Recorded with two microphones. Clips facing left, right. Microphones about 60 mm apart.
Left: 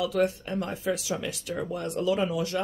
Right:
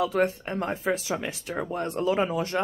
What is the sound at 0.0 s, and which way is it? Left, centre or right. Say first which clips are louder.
Speech: right 1 dB; right.